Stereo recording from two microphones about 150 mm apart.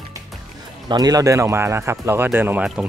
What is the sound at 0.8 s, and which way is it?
Speech, 25° right (ahead or behind).